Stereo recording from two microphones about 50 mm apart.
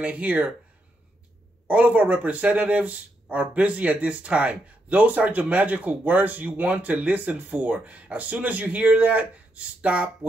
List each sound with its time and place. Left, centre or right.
0.0 s speech: right
1.7 s speech: right